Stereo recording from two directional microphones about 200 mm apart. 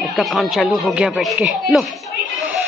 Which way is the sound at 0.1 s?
Centre (ahead or behind).